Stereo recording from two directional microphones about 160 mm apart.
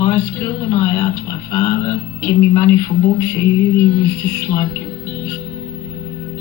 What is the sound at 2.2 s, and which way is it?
Speech, 15° left (ahead or behind).